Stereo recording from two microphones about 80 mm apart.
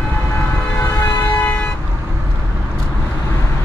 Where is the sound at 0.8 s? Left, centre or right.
Left.